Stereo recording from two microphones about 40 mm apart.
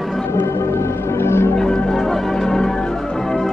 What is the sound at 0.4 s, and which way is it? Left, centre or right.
Music, left.